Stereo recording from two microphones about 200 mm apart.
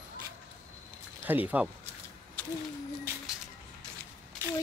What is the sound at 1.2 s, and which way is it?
Speech, 10° right (ahead or behind).